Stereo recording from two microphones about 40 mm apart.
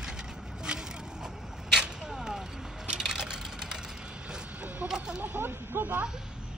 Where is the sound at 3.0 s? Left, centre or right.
Centre.